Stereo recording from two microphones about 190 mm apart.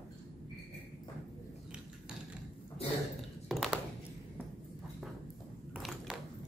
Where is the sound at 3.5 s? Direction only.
Centre (ahead or behind).